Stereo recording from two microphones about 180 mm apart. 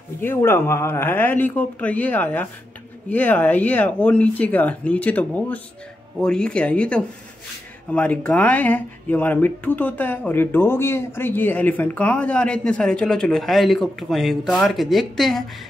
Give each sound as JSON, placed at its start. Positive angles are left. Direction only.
{"t": 0.2, "sound": "speech", "side_deg": 15}